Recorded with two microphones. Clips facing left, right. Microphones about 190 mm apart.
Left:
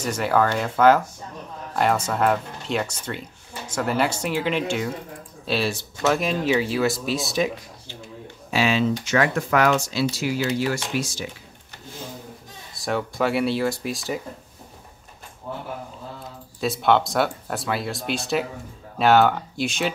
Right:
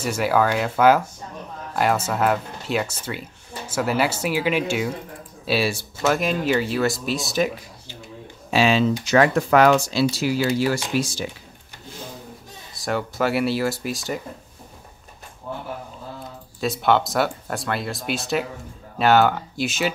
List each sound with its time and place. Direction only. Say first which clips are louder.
0.0 s speech: right 1 dB; 5° right (ahead or behind)
8.5 s speech: right 3 dB; 30° right (ahead or behind)
12.7 s speech: even; centre (ahead or behind)
16.5 s speech: even; centre (ahead or behind)